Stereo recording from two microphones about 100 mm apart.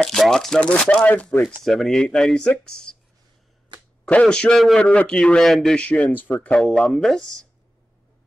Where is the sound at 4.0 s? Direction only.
10° left (ahead or behind).